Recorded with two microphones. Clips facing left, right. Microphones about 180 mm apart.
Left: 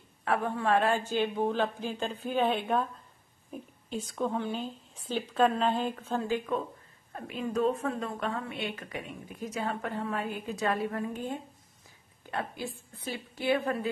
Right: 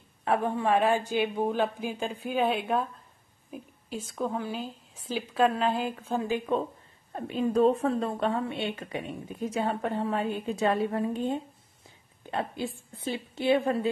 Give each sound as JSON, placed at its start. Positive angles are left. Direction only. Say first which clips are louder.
{"t": 0.2, "sound": "a man's voice", "louder": "right 3 dB", "side_deg": -20}
{"t": 7.1, "sound": "a woman's voice", "louder": "right 6 dB", "side_deg": -30}